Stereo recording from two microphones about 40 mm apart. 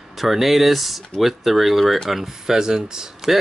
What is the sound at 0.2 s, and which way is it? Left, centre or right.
Speech, centre.